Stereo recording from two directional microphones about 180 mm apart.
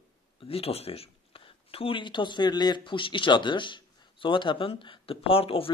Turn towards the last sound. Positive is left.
turn(degrees=30)  # may be behind; listen again after turning